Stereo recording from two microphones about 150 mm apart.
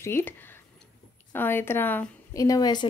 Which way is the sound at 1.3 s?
15° left (ahead or behind).